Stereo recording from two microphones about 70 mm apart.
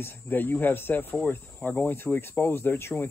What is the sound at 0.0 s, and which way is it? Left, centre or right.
Speech, left.